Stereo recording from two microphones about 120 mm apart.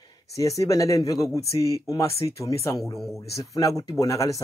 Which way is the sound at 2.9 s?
Centre (ahead or behind).